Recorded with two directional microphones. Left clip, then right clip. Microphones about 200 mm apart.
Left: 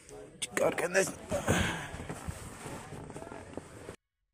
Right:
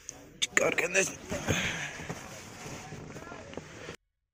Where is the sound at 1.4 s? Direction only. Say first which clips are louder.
Right 1 dB; 35° left (ahead or behind).